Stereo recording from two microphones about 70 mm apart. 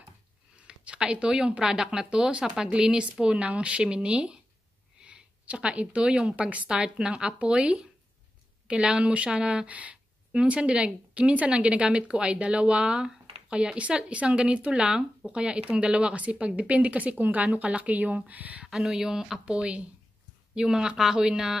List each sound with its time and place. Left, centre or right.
0.7 s a woman's voice: centre
18.7 s speech: centre